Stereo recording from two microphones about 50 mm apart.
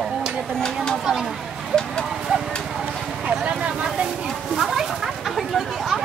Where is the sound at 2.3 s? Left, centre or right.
Right.